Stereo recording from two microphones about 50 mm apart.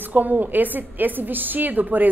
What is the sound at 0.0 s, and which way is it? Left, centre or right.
A woman's voice, right.